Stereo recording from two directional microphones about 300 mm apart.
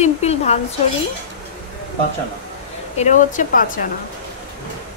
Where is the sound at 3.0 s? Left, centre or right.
Left.